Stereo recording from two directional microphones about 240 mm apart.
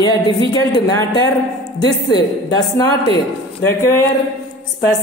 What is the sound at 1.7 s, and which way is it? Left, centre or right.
Speech, centre.